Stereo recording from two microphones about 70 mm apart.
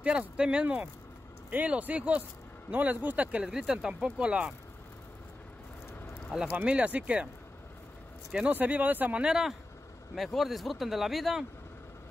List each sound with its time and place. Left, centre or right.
0.0 s speech: centre
3.4 s speech: centre
6.5 s speech: centre
8.5 s speech: right; by 11.4 s centre